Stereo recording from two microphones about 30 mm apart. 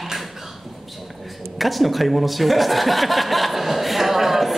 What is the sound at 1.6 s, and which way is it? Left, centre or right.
A man's voice, centre.